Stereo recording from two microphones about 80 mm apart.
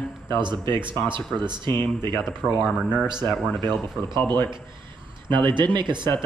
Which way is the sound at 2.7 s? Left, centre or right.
Centre.